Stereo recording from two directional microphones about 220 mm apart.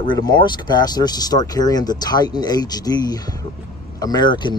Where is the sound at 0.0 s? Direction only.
20° left (ahead or behind).